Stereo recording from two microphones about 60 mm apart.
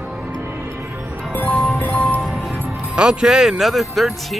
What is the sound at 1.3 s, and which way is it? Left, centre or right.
Music, left.